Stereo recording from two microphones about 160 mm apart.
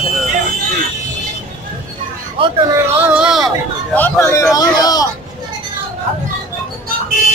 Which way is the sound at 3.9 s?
10° left (ahead or behind).